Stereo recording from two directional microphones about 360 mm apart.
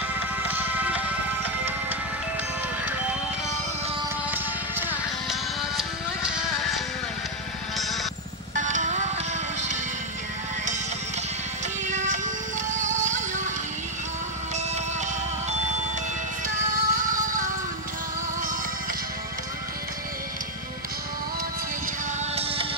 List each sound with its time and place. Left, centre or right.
0.5 s music: centre
4.3 s music: centre
7.7 s music: centre
8.5 s music: right
11.9 s music: centre
16.4 s music: right
22.3 s music: centre